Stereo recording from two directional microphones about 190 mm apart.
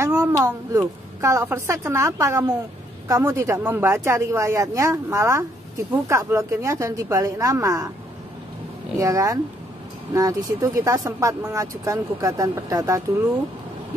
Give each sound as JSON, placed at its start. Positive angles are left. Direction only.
{"t": 0.0, "sound": "speech", "side_deg": -15}
{"t": 8.9, "sound": "speech", "side_deg": -15}